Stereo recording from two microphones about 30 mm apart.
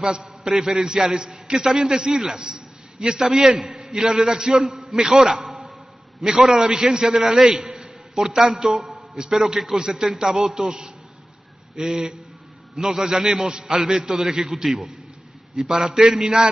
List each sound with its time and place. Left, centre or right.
0.0 s a man's voice: right
4.7 s a man's voice: centre
10.1 s a man's voice: centre